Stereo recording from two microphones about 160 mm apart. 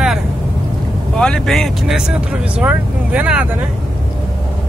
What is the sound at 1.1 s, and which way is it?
Speech, 5° left (ahead or behind).